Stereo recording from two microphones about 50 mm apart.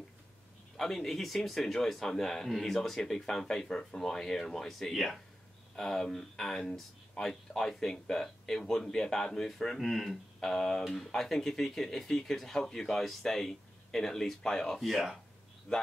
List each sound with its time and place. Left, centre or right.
0.7 s speech: centre
15.7 s speech: centre